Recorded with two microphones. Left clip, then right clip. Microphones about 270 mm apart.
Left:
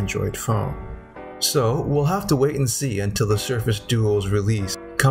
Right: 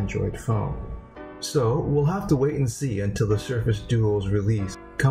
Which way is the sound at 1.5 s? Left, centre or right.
Centre.